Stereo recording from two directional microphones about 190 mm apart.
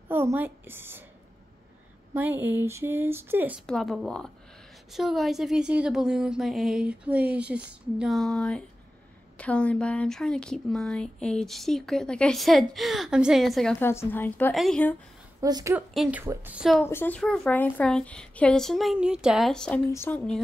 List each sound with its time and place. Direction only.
0.1 s a woman's voice: 10° right (ahead or behind)
2.1 s speech: 10° right (ahead or behind)
3.6 s speech: centre (ahead or behind)
15.4 s speech: 15° right (ahead or behind)
15.9 s speech: 5° right (ahead or behind)
16.8 s speech: 10° left (ahead or behind)